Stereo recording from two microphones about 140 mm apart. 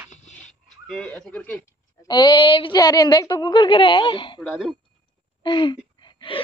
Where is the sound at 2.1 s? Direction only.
30° left (ahead or behind).